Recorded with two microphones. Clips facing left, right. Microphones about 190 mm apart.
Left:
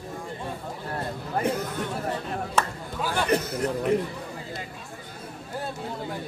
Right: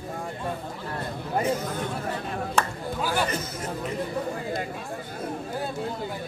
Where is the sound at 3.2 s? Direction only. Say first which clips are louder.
Left 6 dB; 65° left (ahead or behind).